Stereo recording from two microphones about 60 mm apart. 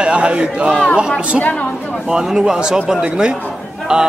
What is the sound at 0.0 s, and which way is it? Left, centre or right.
Speech, centre.